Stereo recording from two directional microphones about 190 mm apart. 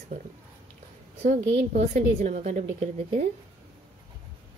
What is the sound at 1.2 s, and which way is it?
Speech, 40° right (ahead or behind).